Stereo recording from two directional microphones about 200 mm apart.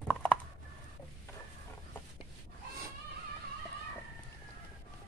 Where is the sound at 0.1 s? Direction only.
5° left (ahead or behind).